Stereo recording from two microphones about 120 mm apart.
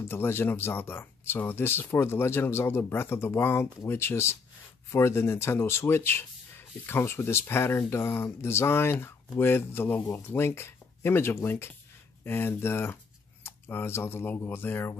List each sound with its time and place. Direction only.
0.1 s speech: 20° left (ahead or behind)